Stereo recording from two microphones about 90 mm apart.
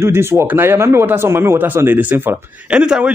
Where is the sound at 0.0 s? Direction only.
30° right (ahead or behind).